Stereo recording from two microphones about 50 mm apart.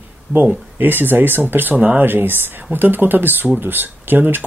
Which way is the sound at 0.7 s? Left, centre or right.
Right.